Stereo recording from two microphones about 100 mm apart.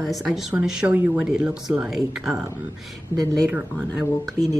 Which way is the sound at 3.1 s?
45° left (ahead or behind).